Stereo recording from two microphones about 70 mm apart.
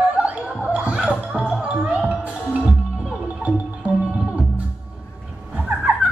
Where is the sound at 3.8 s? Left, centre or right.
Centre.